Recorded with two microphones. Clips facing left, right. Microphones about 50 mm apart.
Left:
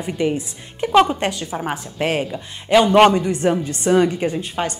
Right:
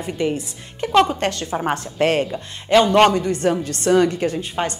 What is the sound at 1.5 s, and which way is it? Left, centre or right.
A woman's voice, centre.